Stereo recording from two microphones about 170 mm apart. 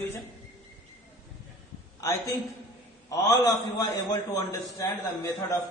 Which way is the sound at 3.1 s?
20° left (ahead or behind).